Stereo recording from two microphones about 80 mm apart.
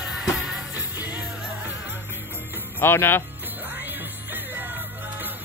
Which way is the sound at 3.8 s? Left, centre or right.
Right.